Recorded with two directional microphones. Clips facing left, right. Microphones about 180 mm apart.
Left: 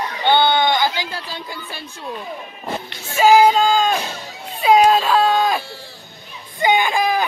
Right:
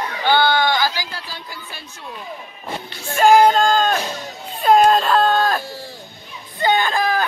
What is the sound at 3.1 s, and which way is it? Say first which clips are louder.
Speech: even; 5° left (ahead or behind).